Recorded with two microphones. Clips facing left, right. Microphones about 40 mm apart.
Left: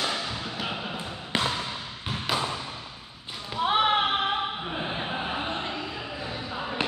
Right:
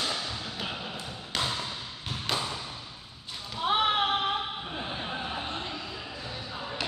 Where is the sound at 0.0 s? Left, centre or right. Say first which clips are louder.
Left 3 dB; left.